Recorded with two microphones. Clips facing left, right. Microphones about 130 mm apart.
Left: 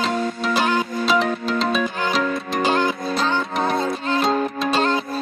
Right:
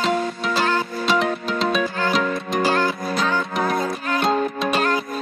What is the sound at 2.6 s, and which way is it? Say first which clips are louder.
Music: left 2 dB; 20° left (ahead or behind).